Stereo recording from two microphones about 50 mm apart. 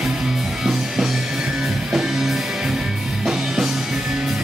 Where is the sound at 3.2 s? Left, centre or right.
Centre.